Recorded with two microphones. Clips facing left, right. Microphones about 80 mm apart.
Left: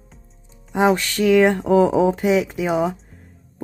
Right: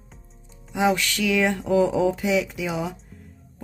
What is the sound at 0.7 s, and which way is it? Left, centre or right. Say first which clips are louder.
Speech: left 4 dB; left.